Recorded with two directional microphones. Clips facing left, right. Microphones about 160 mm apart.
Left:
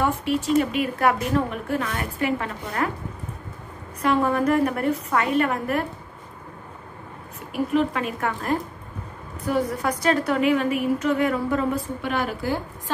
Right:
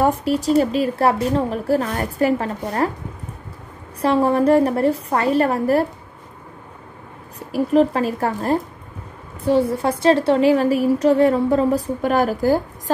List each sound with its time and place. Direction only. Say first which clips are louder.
0.0 s a woman's voice: right 5 dB; 40° right (ahead or behind)
4.0 s a woman's voice: right 5 dB; 30° right (ahead or behind)
7.3 s a woman's voice: right 6 dB; 35° right (ahead or behind)